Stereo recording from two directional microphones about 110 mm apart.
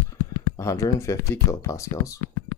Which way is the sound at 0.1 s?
30° left (ahead or behind).